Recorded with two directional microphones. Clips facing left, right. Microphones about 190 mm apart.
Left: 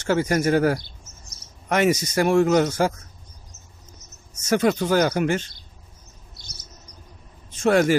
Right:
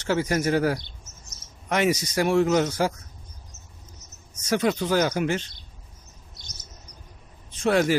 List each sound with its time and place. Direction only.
0.0 s speech: 50° left (ahead or behind)
1.2 s chirp: 35° left (ahead or behind)
1.7 s speech: 50° left (ahead or behind)
4.5 s speech: 50° left (ahead or behind)
6.4 s bird: 10° left (ahead or behind)
7.6 s speech: 50° left (ahead or behind)